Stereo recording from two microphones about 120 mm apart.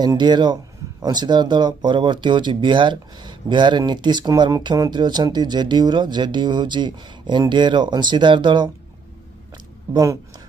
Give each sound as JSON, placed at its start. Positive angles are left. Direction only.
{"t": 0.0, "sound": "speech", "side_deg": -35}
{"t": 9.9, "sound": "speech", "side_deg": -30}